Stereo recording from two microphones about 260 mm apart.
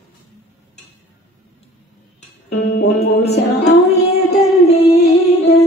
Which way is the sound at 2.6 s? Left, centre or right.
Left.